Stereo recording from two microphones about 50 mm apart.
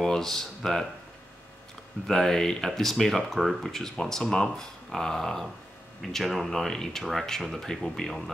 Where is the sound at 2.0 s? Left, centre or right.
Centre.